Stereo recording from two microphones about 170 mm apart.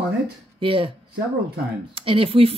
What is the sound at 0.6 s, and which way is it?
Speech, 30° right (ahead or behind).